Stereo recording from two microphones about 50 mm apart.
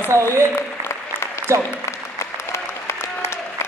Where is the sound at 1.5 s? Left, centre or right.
Right.